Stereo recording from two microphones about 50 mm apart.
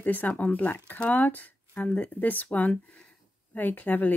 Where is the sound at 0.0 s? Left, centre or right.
Left.